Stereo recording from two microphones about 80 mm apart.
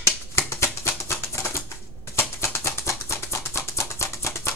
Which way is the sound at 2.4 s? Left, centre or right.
Left.